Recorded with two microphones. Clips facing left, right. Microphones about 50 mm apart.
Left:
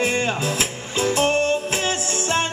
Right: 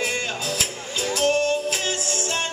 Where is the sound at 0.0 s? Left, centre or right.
Left.